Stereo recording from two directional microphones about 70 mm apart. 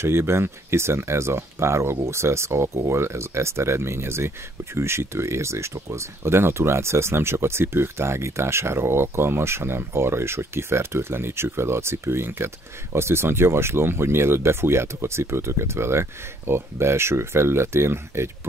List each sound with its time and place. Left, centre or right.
0.0 s speech: right